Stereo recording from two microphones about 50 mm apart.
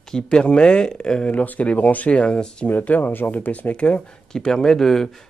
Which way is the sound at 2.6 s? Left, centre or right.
Left.